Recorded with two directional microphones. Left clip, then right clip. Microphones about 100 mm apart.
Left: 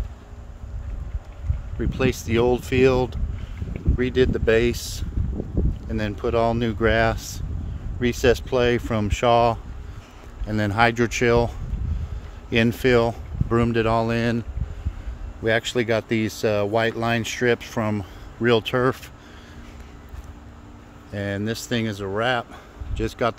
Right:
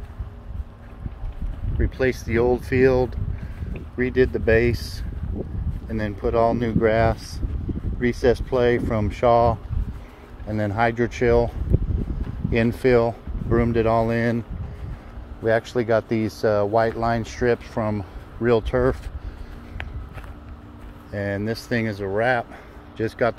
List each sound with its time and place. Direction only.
1.8 s speech: 35° left (ahead or behind); by 11.4 s 65° left (ahead or behind)
12.4 s speech: 50° left (ahead or behind); by 14.4 s 35° left (ahead or behind)
15.4 s speech: 50° left (ahead or behind)
16.7 s speech: 65° left (ahead or behind); by 18.6 s 90° left
18.6 s speech: 50° left (ahead or behind)
21.1 s speech: 35° left (ahead or behind)